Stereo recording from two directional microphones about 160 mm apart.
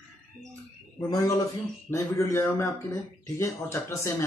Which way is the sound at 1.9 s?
15° left (ahead or behind).